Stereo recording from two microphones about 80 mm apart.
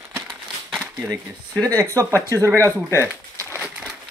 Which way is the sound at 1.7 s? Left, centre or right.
Right.